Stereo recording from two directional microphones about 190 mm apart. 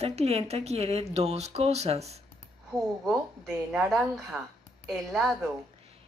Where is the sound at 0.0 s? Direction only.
35° right (ahead or behind).